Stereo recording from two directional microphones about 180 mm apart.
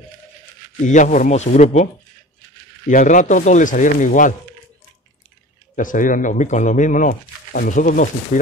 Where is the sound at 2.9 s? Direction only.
45° left (ahead or behind).